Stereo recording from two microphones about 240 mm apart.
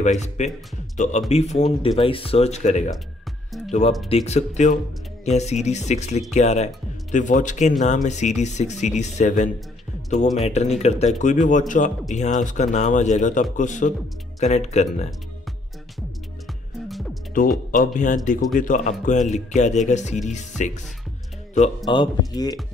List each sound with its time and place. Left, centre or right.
0.0 s speech: left
4.1 s speech: left
16.8 s music: centre
17.6 s speech: left
21.8 s speech: centre